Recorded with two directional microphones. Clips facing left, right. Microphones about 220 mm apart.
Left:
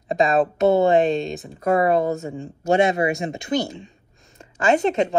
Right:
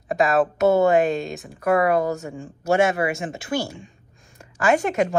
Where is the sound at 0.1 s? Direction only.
20° left (ahead or behind).